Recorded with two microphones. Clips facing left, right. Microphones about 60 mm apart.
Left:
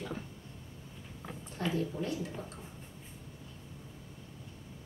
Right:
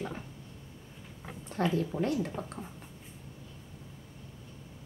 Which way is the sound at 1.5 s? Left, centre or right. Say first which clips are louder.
Right 9 dB; right.